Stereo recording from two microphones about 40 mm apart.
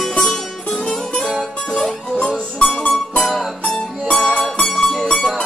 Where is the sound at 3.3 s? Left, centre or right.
Centre.